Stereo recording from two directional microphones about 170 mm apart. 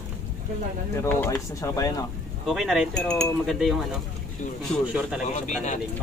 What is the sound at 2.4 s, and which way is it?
Speech, centre (ahead or behind).